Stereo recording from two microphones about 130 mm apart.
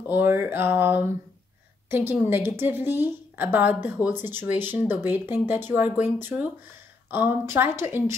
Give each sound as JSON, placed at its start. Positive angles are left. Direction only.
{"t": 0.1, "sound": "a woman's voice", "side_deg": -15}